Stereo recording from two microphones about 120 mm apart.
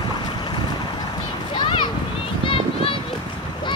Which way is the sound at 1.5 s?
40° left (ahead or behind).